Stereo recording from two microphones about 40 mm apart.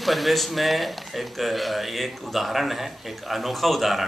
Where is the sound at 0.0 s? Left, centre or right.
Centre.